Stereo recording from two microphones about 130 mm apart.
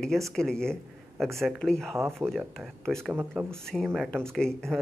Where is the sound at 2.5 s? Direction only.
5° left (ahead or behind).